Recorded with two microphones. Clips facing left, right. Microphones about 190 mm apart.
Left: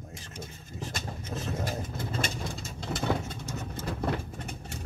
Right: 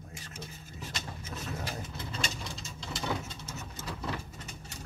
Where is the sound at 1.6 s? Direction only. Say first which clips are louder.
Left 5 dB; 50° left (ahead or behind).